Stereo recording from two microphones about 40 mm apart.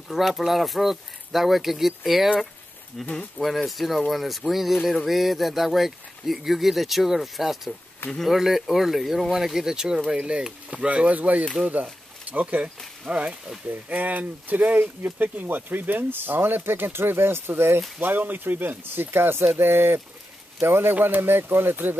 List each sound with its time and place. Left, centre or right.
0.3 s speech: centre
3.3 s speech: centre
10.0 s speech: right
13.8 s speech: right
18.0 s speech: right
20.9 s speech: right